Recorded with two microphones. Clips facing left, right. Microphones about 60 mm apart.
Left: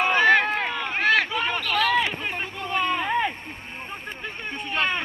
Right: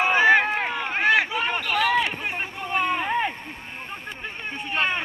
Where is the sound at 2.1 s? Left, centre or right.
Centre.